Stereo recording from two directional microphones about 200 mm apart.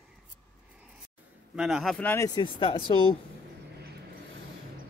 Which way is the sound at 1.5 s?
Centre (ahead or behind).